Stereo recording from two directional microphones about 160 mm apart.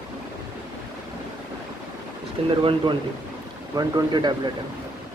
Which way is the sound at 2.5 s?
30° right (ahead or behind).